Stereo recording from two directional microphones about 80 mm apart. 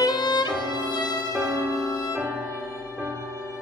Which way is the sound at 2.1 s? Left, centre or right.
Right.